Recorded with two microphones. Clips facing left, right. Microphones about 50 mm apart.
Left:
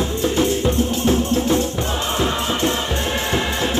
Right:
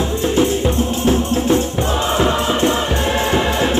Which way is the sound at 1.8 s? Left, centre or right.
Right.